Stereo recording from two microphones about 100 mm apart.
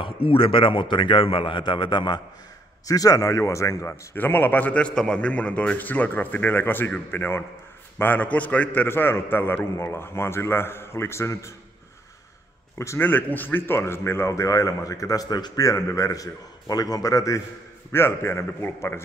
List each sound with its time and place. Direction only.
0.0 s a man's voice: 65° left (ahead or behind)
2.9 s a man's voice: 35° left (ahead or behind)
3.9 s a man's voice: 20° left (ahead or behind)
12.7 s a man's voice: 30° left (ahead or behind)